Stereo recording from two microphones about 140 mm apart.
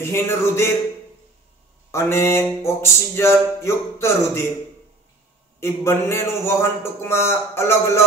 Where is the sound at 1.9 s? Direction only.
20° left (ahead or behind).